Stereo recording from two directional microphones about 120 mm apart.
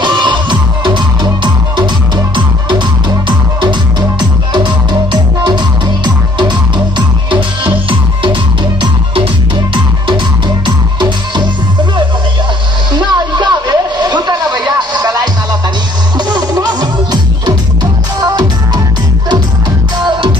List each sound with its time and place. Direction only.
0.0 s music: 40° right (ahead or behind)
4.2 s music: 40° right (ahead or behind)
8.8 s music: 45° right (ahead or behind)
10.6 s music: 40° right (ahead or behind)
12.9 s a sound: 40° right (ahead or behind)
16.2 s music: 35° right (ahead or behind)
20.1 s music: 40° right (ahead or behind)